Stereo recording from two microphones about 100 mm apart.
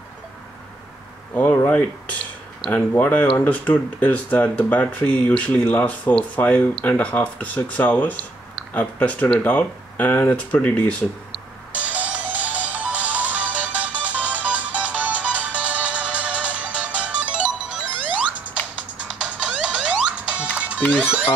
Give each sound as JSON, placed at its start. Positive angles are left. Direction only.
{"t": 1.3, "sound": "speech", "side_deg": 25}
{"t": 11.7, "sound": "music", "side_deg": -15}